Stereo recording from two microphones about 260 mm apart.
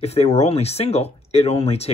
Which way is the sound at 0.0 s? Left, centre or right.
Left.